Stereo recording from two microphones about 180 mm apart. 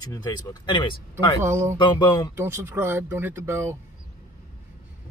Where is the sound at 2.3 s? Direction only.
15° right (ahead or behind).